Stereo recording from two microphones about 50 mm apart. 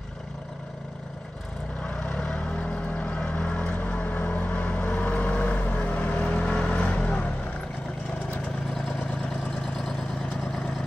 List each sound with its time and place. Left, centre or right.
2.0 s vehicle: centre